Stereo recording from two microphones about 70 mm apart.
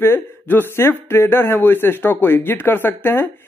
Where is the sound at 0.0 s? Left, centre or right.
Left.